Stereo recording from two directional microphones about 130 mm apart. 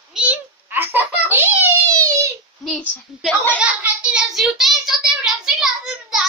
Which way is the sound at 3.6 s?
10° right (ahead or behind).